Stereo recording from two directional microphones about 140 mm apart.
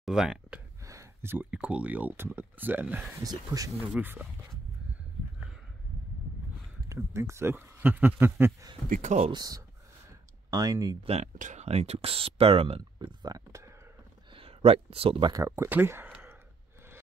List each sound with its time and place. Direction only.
0.0 s speech: 5° right (ahead or behind)
0.8 s speech: 20° right (ahead or behind)
3.2 s speech: 25° right (ahead or behind)
3.8 s speech: 15° right (ahead or behind)
6.9 s speech: 20° right (ahead or behind)
8.8 s speech: 60° right (ahead or behind)
9.3 s speech: 25° right (ahead or behind)
11.1 s speech: 60° right (ahead or behind); by 13.1 s 45° right (ahead or behind)
13.2 s speech: 25° right (ahead or behind)
14.3 s speech: 45° right (ahead or behind)
15.3 s speech: 20° right (ahead or behind)